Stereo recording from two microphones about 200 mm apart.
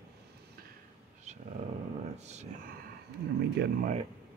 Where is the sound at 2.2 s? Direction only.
35° right (ahead or behind).